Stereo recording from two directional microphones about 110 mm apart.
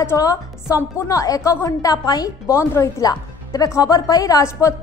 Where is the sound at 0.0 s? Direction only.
25° left (ahead or behind).